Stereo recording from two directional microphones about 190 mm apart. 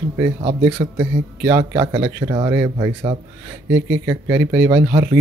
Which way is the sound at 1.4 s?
15° right (ahead or behind).